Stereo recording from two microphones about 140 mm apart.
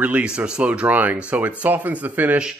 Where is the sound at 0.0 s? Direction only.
10° right (ahead or behind).